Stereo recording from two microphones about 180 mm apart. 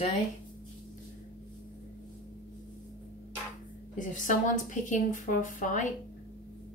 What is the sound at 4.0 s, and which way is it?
A woman's voice, 45° left (ahead or behind).